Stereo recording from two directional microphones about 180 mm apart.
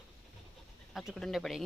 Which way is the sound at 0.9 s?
Centre (ahead or behind).